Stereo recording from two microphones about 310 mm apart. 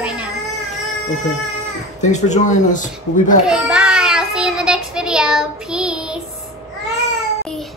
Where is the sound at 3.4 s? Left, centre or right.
Centre.